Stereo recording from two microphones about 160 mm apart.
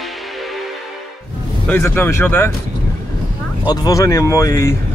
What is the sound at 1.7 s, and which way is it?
Speech, 15° left (ahead or behind).